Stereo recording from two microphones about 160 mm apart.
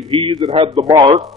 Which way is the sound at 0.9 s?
25° right (ahead or behind).